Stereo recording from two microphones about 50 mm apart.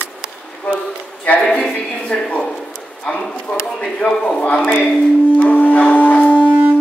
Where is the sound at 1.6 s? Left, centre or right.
Centre.